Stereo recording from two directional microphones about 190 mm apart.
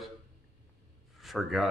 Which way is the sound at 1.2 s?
Centre (ahead or behind).